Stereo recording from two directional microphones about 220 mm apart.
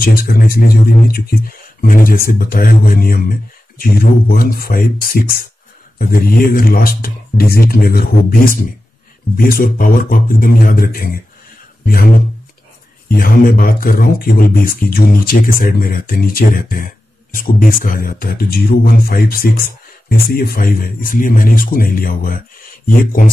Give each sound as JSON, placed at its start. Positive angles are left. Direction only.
{"t": 0.0, "sound": "speech", "side_deg": 40}
{"t": 13.1, "sound": "speech", "side_deg": 40}